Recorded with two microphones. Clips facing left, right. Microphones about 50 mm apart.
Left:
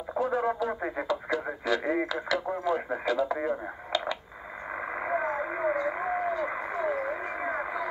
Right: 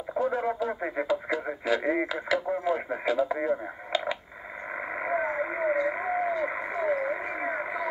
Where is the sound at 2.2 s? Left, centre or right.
Centre.